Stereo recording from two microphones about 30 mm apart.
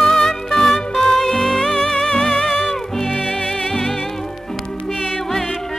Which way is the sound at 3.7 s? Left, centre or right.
Centre.